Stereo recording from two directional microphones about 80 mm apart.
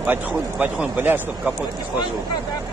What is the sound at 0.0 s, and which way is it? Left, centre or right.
Speech, right.